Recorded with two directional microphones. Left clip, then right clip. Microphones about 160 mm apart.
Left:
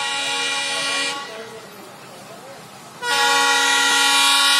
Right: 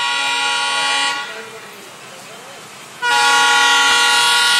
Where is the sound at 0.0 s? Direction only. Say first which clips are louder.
Right 5 dB; 60° left (ahead or behind).